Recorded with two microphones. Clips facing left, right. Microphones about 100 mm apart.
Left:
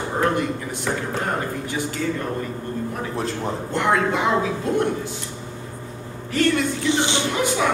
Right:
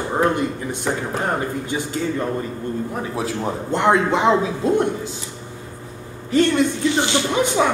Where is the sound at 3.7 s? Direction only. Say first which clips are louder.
Right 4 dB; 20° right (ahead or behind).